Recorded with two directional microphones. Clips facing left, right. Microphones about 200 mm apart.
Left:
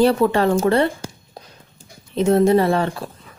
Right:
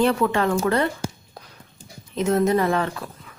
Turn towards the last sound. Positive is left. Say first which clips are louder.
# left 4 dB
turn(degrees=30)  # may be behind; listen again after turning